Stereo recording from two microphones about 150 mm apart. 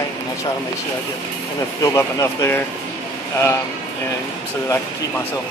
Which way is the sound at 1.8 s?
20° left (ahead or behind).